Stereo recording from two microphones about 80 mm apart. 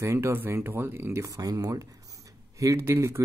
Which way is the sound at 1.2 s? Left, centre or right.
Right.